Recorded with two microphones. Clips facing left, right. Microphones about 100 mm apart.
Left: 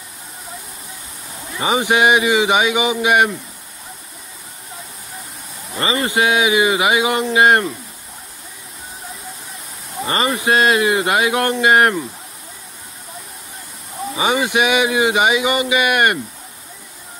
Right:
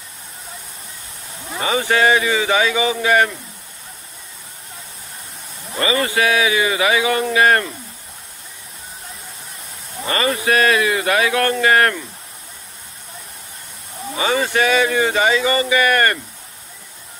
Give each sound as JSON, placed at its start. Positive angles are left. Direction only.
{"t": 1.6, "sound": "a man's voice", "side_deg": 20}
{"t": 5.8, "sound": "speech", "side_deg": 25}
{"t": 10.0, "sound": "speech", "side_deg": 25}
{"t": 14.1, "sound": "a man's voice", "side_deg": 15}